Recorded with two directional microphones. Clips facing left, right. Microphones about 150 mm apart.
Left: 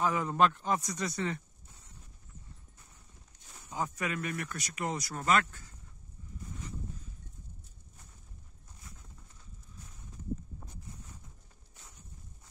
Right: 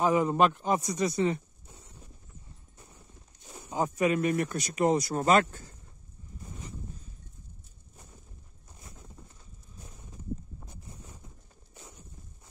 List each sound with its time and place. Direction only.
0.0 s speech: 20° right (ahead or behind)
3.4 s speech: 25° right (ahead or behind)